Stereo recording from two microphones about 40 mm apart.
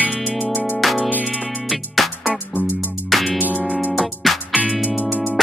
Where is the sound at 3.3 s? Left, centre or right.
Right.